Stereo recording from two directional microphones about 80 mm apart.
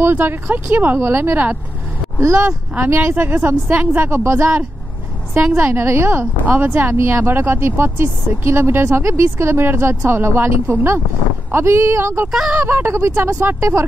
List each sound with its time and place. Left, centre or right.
0.0 s speech: right
2.4 s speech: centre
2.9 s speech: right
5.5 s speech: right
12.3 s speech: centre
12.6 s speech: right
13.3 s speech: right
13.6 s speech: right